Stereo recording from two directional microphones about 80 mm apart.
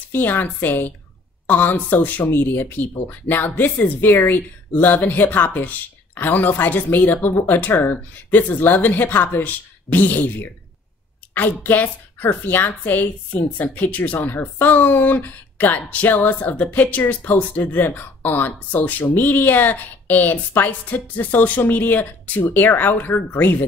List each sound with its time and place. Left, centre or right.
0.1 s a woman's voice: left